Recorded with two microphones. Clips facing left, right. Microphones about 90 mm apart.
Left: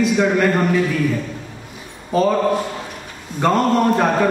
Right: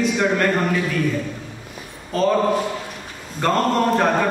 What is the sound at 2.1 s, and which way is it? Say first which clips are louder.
Speech: left 3 dB; 5° left (ahead or behind).